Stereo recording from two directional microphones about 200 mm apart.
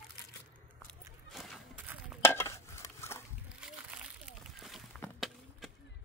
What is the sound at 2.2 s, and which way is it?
Dishes, 10° left (ahead or behind).